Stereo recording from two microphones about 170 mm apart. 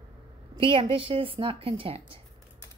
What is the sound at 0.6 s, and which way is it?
A woman's voice, 30° right (ahead or behind).